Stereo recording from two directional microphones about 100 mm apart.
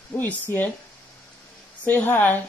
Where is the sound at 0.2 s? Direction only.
20° left (ahead or behind).